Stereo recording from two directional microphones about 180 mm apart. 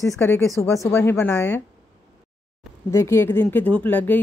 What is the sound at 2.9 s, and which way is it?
Speech, 15° left (ahead or behind).